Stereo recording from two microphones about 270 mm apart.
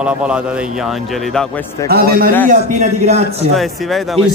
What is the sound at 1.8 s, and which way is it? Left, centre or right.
A man's voice, right.